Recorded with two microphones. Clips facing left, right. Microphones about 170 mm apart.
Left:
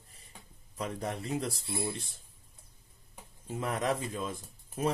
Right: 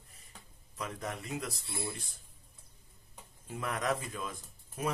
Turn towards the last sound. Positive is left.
turn(degrees=25)  # may be behind; listen again after turning